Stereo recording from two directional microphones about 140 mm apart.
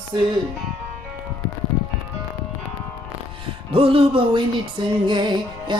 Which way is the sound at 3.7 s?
40° right (ahead or behind).